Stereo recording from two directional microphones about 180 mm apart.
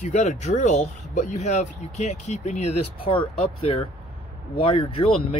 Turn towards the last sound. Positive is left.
turn(degrees=30)  # may be behind; listen again after turning